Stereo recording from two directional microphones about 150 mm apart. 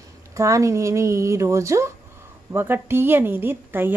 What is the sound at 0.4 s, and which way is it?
A woman's voice, 20° right (ahead or behind).